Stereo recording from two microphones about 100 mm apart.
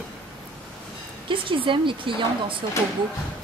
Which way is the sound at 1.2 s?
60° right (ahead or behind).